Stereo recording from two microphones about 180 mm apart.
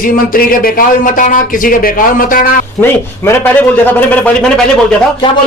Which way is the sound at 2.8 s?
10° left (ahead or behind).